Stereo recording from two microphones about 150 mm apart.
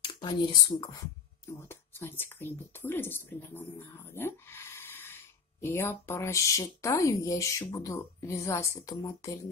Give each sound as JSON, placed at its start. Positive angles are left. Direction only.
{"t": 0.0, "sound": "speech", "side_deg": 30}